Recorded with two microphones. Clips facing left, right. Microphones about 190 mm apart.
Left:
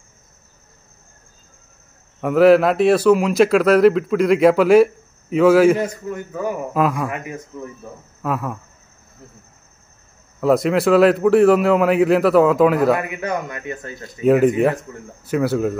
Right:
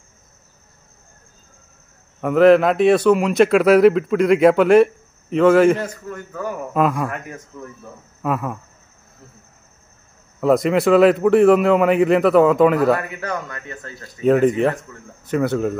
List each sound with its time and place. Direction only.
2.2 s speech: 5° left (ahead or behind)
10.4 s speech: centre (ahead or behind)
13.0 s a man's voice: 15° left (ahead or behind)
14.2 s speech: 5° left (ahead or behind)